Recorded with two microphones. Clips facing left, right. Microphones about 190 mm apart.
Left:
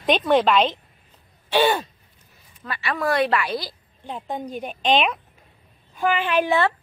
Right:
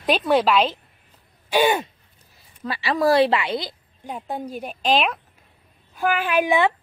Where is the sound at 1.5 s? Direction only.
15° right (ahead or behind).